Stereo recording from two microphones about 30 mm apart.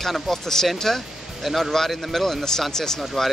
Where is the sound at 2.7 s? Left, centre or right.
Centre.